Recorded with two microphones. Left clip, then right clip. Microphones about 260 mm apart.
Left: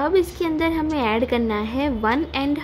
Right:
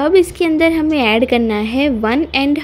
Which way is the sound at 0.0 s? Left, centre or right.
Right.